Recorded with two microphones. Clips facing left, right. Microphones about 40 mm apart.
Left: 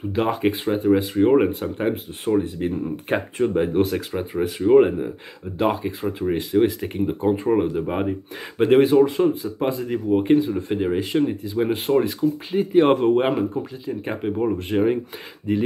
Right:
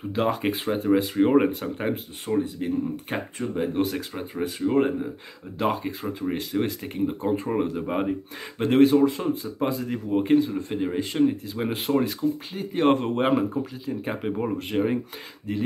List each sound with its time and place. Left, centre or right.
0.1 s speech: centre
2.4 s speech: centre
4.6 s speech: centre
5.6 s speech: centre